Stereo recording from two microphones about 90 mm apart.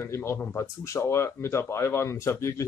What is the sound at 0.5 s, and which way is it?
Speech, 35° left (ahead or behind).